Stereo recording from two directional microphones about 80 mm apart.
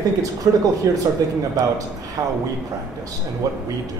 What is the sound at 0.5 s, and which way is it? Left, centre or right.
Speech, right.